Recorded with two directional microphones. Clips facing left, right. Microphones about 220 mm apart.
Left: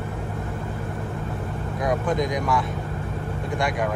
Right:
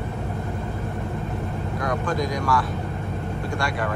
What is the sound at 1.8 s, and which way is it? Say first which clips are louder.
Speech: left 3 dB; 20° left (ahead or behind).